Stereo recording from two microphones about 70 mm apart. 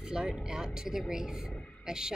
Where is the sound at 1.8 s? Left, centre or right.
Centre.